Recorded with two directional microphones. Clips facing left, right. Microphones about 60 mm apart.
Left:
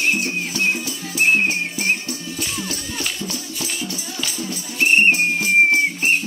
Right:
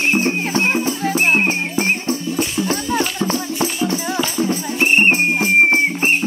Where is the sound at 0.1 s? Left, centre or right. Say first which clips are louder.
Right 6 dB; right.